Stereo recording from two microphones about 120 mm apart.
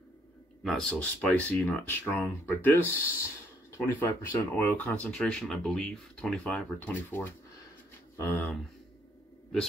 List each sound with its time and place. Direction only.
0.7 s speech: 5° left (ahead or behind)
6.8 s speech: 15° left (ahead or behind)